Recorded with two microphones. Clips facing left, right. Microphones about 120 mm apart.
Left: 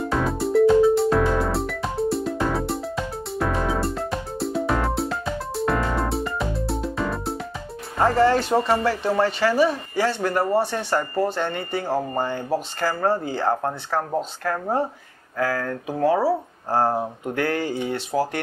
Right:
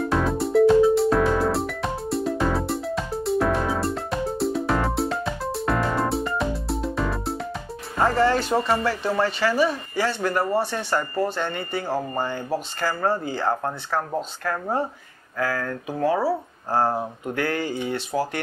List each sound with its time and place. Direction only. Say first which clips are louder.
0.0 s music: right 1 dB; centre (ahead or behind)
8.3 s speech: left 2 dB; 35° left (ahead or behind)